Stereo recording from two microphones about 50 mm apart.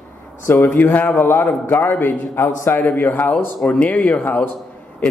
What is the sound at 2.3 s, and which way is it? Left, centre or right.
Speech, left.